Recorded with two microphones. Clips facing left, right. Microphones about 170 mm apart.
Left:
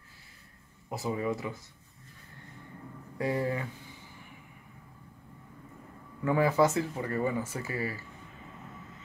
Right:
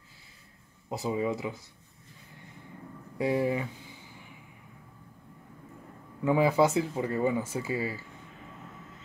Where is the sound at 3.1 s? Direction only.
15° right (ahead or behind).